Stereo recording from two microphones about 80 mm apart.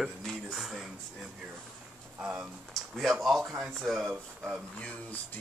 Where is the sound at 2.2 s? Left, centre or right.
Centre.